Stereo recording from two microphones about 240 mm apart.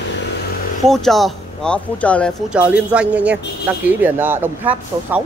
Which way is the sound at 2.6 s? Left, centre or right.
Centre.